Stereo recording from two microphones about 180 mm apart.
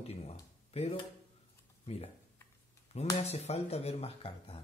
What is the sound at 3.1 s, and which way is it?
Speech, 35° left (ahead or behind).